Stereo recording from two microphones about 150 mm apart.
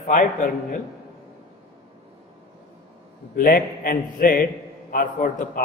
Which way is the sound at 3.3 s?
70° left (ahead or behind).